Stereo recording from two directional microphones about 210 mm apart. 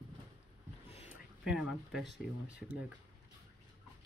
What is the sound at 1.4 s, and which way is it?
Speech, centre (ahead or behind).